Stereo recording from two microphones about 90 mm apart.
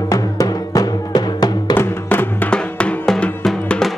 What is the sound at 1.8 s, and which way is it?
Music, 20° left (ahead or behind).